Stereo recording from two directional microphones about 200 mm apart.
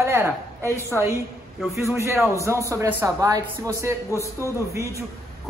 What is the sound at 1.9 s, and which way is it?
A man's voice, 15° right (ahead or behind).